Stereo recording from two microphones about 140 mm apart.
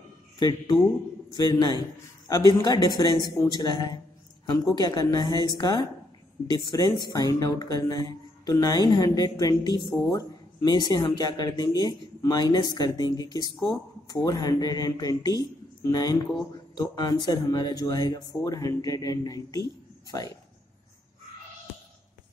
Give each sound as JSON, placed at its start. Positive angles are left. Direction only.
{"t": 0.4, "sound": "speech", "side_deg": 30}